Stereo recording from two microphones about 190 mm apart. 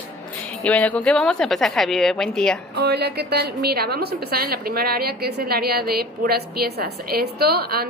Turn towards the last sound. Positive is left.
turn(degrees=-55)  # may be behind; listen again after turning